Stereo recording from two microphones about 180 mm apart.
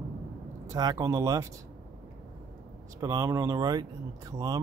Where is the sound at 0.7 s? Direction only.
20° right (ahead or behind).